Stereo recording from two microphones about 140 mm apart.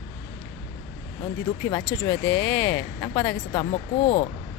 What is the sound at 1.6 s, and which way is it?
Speech, 20° left (ahead or behind).